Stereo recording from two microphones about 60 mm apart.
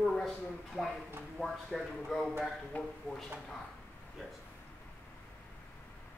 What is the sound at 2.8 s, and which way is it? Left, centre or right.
Speech, left.